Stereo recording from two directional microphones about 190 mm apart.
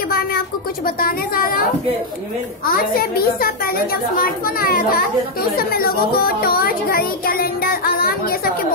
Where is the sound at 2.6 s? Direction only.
50° left (ahead or behind).